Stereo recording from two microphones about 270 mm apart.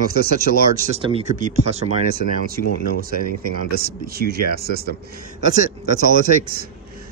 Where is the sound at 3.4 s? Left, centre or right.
Right.